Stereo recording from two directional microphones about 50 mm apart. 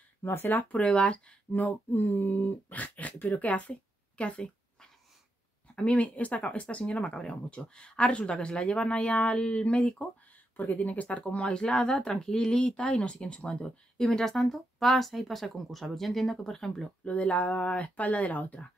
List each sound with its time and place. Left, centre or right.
0.2 s speech: left
0.7 s speech: left
5.8 s speech: left
10.5 s speech: left
13.9 s speech: centre
17.0 s speech: left